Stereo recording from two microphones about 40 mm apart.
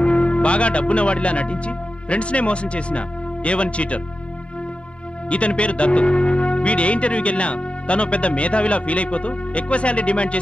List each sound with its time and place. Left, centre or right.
0.0 s speech: left
5.3 s speech: left